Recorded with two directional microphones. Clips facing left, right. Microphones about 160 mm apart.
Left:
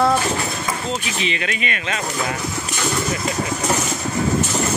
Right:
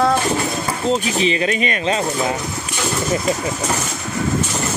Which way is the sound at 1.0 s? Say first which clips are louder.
Right 6 dB; 35° right (ahead or behind).